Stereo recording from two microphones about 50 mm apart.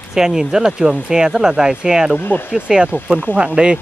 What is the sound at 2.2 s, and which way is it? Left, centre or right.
Speech, left.